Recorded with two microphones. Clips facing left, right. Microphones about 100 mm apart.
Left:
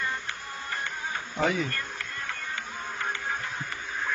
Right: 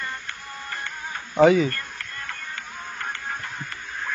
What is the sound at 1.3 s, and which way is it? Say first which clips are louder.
Speech: right 11 dB; 90° right.